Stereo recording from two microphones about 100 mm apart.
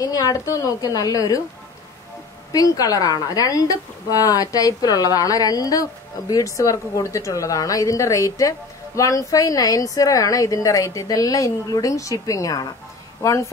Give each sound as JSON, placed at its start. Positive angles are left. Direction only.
{"t": 0.0, "sound": "a woman's voice", "side_deg": 35}
{"t": 2.5, "sound": "a woman's voice", "side_deg": 35}